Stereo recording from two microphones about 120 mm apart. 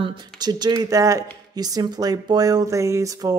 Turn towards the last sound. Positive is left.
turn(degrees=-30)  # may be behind; listen again after turning